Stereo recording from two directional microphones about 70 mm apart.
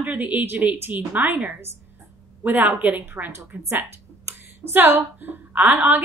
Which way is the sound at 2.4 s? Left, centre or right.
Right.